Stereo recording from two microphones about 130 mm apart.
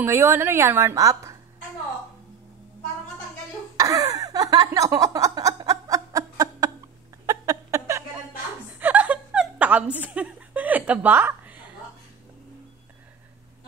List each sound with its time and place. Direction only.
0.0 s a woman's voice: 15° right (ahead or behind)
3.7 s a sound: 25° right (ahead or behind)
8.7 s chuckle: 10° right (ahead or behind)